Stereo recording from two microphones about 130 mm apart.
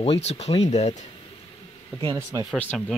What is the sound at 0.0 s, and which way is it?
Speech, 55° left (ahead or behind).